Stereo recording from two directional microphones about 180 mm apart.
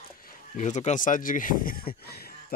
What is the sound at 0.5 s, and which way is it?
Speech, 40° left (ahead or behind).